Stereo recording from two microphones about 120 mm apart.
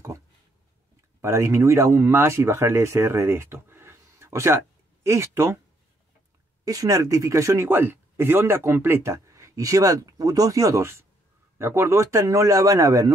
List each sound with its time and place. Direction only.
1.2 s speech: 25° right (ahead or behind)
6.6 s speech: 30° right (ahead or behind)